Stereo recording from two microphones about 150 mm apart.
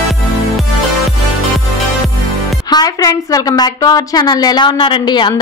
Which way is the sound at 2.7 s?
25° left (ahead or behind).